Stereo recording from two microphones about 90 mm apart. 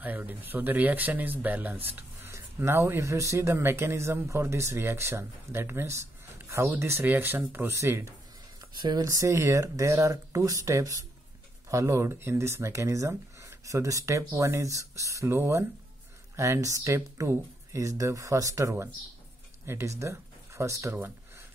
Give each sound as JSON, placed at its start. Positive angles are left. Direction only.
{"t": 0.0, "sound": "speech", "side_deg": -20}
{"t": 2.0, "sound": "speech", "side_deg": -30}
{"t": 8.5, "sound": "a sound", "side_deg": -50}
{"t": 9.0, "sound": "speech", "side_deg": -35}